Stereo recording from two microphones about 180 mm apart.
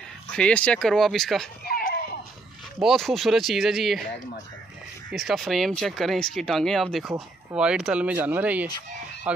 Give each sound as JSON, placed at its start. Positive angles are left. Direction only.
{"t": 0.4, "sound": "speech", "side_deg": 5}
{"t": 1.6, "sound": "a sound", "side_deg": 55}
{"t": 2.8, "sound": "speech", "side_deg": 0}
{"t": 5.1, "sound": "speech", "side_deg": 0}